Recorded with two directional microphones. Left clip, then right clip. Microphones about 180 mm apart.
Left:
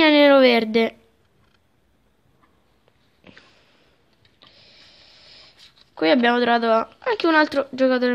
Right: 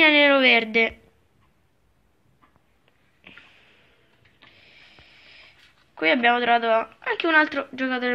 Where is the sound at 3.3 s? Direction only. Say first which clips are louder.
Right 1 dB; 55° left (ahead or behind).